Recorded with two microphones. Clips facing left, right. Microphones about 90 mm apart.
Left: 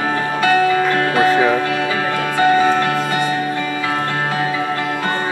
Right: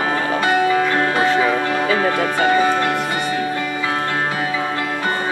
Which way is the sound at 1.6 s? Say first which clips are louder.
Right 1 dB; 10° right (ahead or behind).